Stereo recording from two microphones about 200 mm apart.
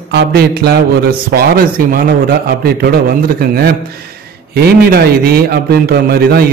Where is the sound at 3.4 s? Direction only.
50° right (ahead or behind).